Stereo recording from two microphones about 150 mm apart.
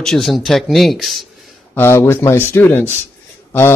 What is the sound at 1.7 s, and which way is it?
Speech, 15° left (ahead or behind).